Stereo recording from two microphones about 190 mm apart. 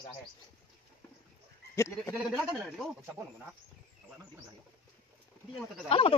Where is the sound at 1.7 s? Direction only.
15° left (ahead or behind).